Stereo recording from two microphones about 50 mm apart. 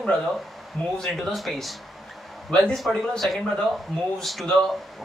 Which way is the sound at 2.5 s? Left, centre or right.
Centre.